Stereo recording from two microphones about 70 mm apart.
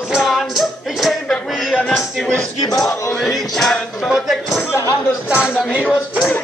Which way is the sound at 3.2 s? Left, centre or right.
Centre.